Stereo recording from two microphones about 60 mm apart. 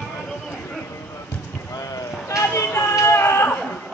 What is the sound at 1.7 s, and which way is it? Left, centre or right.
Boat, left.